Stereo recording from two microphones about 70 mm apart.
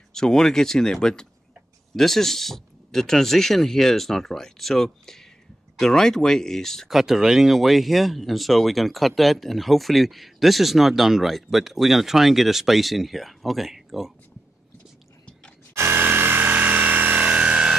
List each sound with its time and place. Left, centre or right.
0.1 s speech: centre
6.9 s speech: centre
15.7 s a sound: right; by 17.7 s centre